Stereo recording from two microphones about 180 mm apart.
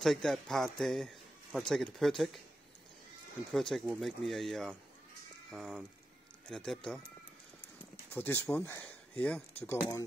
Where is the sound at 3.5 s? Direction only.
Centre (ahead or behind).